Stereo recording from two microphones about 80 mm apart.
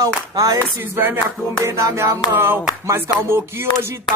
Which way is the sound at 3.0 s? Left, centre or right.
Right.